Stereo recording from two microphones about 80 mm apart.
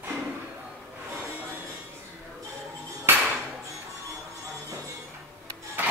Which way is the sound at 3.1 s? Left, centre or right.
Right.